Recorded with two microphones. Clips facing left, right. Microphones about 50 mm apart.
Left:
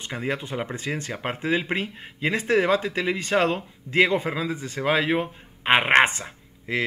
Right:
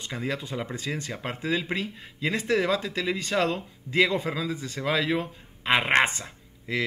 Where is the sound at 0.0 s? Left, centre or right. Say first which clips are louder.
Left 3 dB; left.